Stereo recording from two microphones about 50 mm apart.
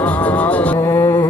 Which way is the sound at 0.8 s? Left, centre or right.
Left.